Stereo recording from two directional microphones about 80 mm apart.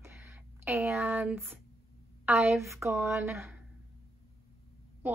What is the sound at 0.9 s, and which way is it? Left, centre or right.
Speech, right.